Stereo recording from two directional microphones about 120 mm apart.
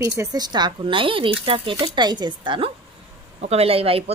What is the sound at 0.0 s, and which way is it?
A woman's voice, 30° right (ahead or behind).